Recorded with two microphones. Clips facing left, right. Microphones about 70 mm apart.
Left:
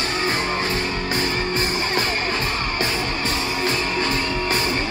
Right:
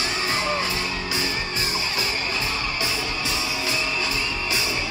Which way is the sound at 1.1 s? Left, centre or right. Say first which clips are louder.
Left 5 dB; left.